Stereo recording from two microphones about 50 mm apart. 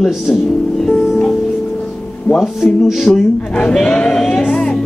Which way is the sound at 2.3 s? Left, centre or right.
Centre.